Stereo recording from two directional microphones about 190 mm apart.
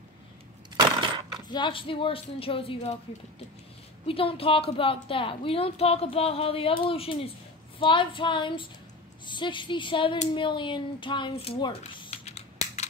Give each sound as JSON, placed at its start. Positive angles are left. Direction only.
{"t": 0.7, "sound": "crushing", "side_deg": -25}
{"t": 1.5, "sound": "a woman's voice", "side_deg": 25}
{"t": 4.0, "sound": "a woman's voice", "side_deg": 30}